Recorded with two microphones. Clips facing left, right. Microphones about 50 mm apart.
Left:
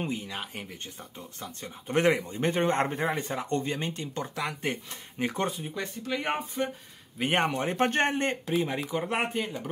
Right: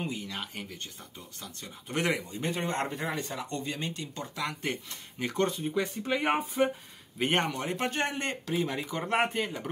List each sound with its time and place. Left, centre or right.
0.0 s speech: left
0.3 s speech: left
1.4 s a man's voice: left
5.5 s speech: centre
6.2 s speech: centre
7.2 s speech: centre
7.4 s a man's voice: left
8.1 s speech: left
9.0 s speech: centre